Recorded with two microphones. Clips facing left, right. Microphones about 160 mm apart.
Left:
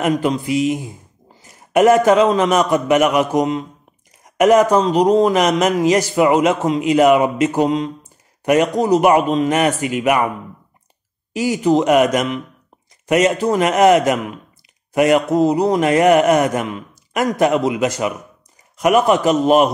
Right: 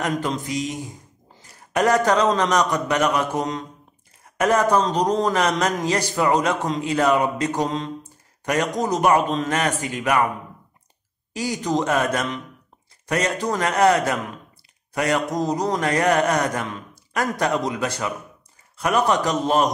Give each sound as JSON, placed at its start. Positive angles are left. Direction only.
{"t": 0.0, "sound": "speech", "side_deg": 10}
{"t": 11.3, "sound": "speech", "side_deg": 10}